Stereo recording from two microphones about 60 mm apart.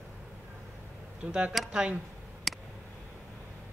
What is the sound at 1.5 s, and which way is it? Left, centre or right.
Speech, centre.